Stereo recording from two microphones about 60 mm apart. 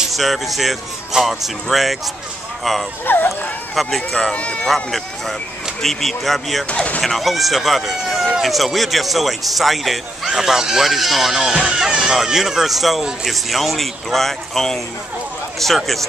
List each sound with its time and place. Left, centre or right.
0.1 s speech: centre
4.1 s speech: centre
4.6 s speech: centre
6.7 s speech: left
7.0 s speech: centre